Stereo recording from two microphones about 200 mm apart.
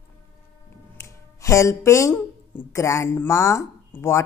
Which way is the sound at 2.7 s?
15° left (ahead or behind).